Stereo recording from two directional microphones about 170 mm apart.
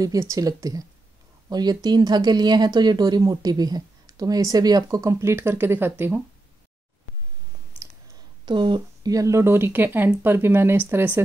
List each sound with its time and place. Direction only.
0.0 s speech: 20° right (ahead or behind)
8.5 s speech: 25° right (ahead or behind)